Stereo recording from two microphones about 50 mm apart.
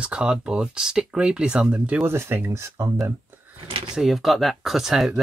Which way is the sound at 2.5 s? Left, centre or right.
Right.